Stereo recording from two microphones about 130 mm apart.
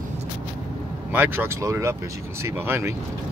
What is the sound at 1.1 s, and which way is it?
Speech, 15° right (ahead or behind).